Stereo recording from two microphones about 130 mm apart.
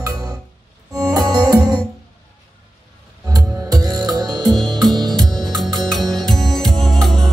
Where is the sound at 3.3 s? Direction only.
30° right (ahead or behind).